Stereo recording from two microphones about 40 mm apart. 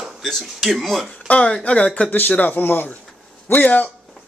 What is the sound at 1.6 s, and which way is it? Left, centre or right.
Speech, left.